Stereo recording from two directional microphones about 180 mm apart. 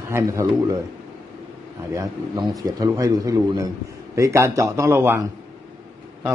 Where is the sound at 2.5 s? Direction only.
20° right (ahead or behind).